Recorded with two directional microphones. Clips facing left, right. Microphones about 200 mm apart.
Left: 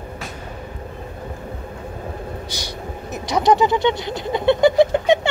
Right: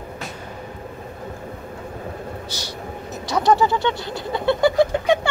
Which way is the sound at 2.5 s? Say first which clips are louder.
Left 1 dB; 15° left (ahead or behind).